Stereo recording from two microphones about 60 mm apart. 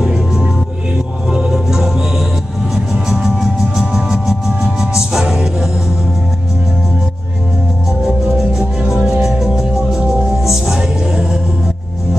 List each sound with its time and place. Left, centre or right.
0.0 s music: centre
8.0 s music: centre